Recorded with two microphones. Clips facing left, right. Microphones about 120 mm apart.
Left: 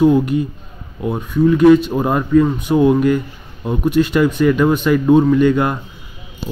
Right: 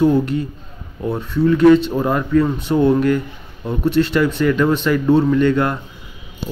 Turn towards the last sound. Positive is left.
turn(degrees=15)  # may be behind; listen again after turning